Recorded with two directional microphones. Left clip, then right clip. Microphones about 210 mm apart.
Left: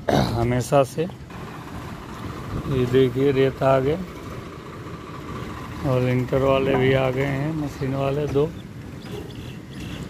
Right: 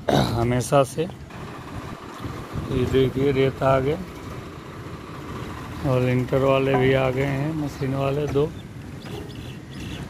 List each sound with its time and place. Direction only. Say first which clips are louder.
0.0 s speech: even; centre (ahead or behind)
2.8 s speech: left 2 dB; 15° left (ahead or behind)
5.9 s speech: even; centre (ahead or behind)